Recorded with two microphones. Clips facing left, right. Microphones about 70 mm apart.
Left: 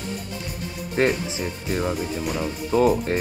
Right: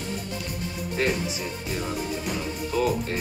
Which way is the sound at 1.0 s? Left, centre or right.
Left.